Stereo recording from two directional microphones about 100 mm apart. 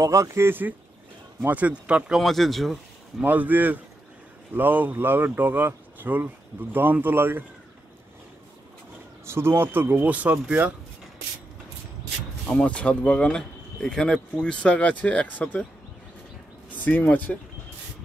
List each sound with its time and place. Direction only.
0.0 s speech: 30° right (ahead or behind); by 2.1 s 10° right (ahead or behind)
2.1 s speech: centre (ahead or behind)
3.2 s speech: 15° right (ahead or behind)
9.2 s speech: 25° right (ahead or behind)
12.4 s speech: 10° left (ahead or behind)
16.7 s speech: 15° left (ahead or behind)